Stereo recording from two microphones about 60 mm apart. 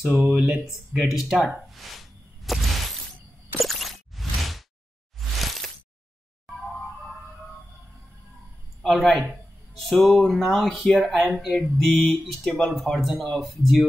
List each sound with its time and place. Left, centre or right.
0.0 s speech: centre
3.6 s a sound: centre
8.8 s speech: centre
12.4 s speech: centre
12.7 s speech: centre